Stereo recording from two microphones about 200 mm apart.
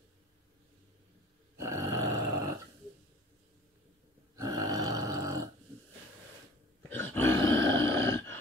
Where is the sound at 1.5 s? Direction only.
15° right (ahead or behind).